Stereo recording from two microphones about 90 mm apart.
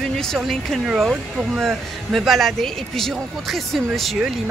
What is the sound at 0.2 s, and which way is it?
Speech, 5° left (ahead or behind).